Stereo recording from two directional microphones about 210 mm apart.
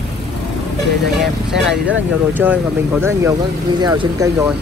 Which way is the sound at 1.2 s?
5° right (ahead or behind).